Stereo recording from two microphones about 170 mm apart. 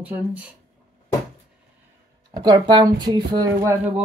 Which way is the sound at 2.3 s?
25° right (ahead or behind).